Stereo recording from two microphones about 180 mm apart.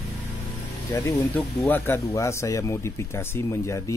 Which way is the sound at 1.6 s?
10° left (ahead or behind).